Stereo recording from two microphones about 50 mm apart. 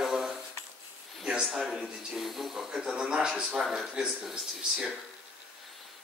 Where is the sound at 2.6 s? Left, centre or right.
Centre.